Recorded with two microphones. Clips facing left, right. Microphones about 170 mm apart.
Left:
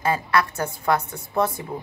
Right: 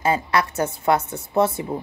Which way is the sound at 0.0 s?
25° right (ahead or behind).